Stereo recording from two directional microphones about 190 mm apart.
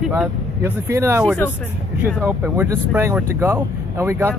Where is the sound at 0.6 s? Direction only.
10° right (ahead or behind).